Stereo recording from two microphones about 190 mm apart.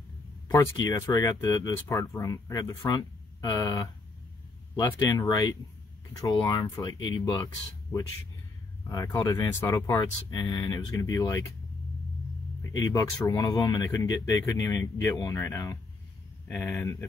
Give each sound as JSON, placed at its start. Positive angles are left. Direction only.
{"t": 0.5, "sound": "speech", "side_deg": 15}
{"t": 12.7, "sound": "speech", "side_deg": 15}